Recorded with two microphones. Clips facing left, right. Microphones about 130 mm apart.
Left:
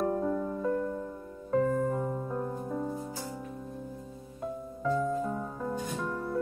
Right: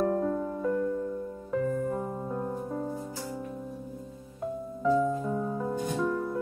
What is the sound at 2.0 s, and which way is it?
Music, 15° right (ahead or behind).